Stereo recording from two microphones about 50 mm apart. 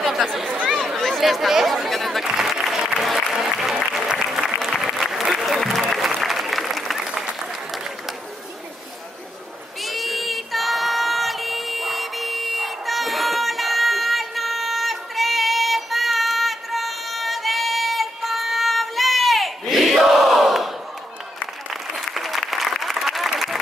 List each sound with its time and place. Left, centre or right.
0.7 s a sound: centre
1.3 s chatter: centre
2.2 s applause: centre
4.4 s applause: centre
7.0 s applause: centre
9.8 s child singing: centre
21.6 s applause: centre